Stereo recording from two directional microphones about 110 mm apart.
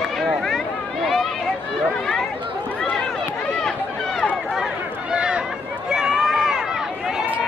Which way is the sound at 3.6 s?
5° left (ahead or behind).